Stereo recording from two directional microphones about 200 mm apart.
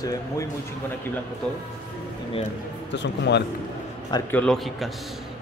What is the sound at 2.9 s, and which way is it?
Speech, 60° left (ahead or behind).